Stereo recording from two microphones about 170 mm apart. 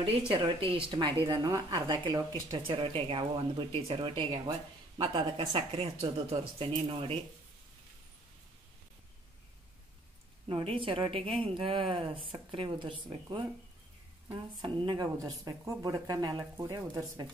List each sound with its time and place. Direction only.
0.3 s a woman's voice: 30° right (ahead or behind)
10.5 s a woman's voice: 30° right (ahead or behind)